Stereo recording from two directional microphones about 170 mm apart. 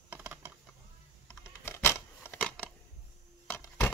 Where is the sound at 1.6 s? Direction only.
15° left (ahead or behind).